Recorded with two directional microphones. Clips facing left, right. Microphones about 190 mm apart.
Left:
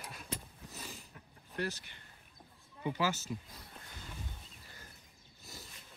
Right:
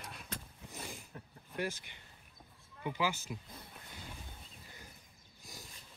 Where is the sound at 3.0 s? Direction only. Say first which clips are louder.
Even; 15° right (ahead or behind).